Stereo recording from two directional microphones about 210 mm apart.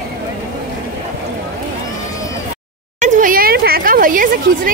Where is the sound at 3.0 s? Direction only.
40° right (ahead or behind).